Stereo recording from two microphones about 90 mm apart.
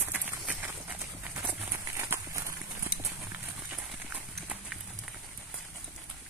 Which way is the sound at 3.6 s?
10° right (ahead or behind).